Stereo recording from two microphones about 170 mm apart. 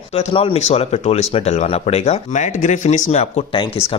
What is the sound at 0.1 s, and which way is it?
Speech, 35° left (ahead or behind).